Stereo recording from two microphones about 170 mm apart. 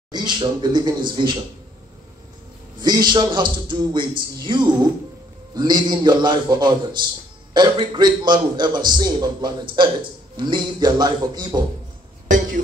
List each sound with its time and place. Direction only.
0.1 s a man's voice: 25° right (ahead or behind)
2.8 s a man's voice: 25° right (ahead or behind)
12.3 s a sound: 50° right (ahead or behind)